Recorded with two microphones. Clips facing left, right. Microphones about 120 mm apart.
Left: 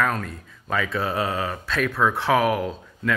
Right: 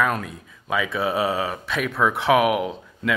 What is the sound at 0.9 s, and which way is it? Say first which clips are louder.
Speech: right 4 dB; 15° right (ahead or behind).